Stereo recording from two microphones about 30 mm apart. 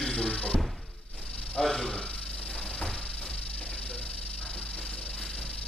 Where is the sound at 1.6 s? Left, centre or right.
Centre.